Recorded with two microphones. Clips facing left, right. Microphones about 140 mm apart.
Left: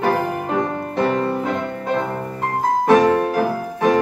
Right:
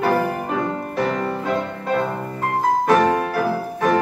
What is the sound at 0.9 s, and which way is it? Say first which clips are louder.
Music: left 4 dB; 25° left (ahead or behind).